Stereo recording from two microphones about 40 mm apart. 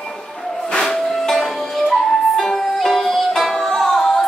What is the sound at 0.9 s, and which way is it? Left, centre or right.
Music, centre.